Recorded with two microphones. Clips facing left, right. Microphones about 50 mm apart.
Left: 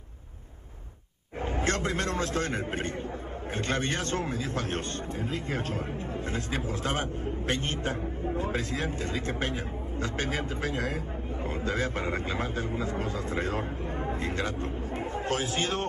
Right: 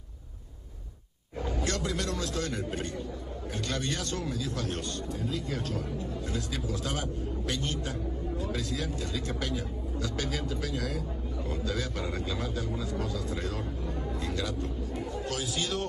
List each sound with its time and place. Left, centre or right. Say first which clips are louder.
1.4 s a man's voice: left 3 dB; left